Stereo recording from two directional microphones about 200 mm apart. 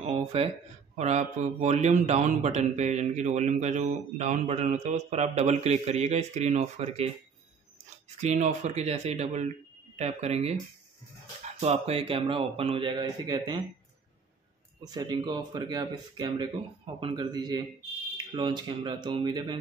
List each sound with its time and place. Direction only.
0.0 s a sound: 30° right (ahead or behind)
0.9 s a man's voice: 35° right (ahead or behind)
8.2 s a man's voice: 35° right (ahead or behind); by 13.6 s 20° right (ahead or behind)
14.8 s speech: 20° right (ahead or behind)